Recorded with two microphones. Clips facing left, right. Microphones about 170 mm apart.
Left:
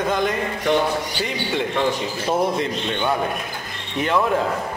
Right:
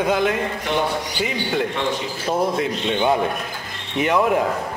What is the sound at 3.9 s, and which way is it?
Speech, 15° right (ahead or behind).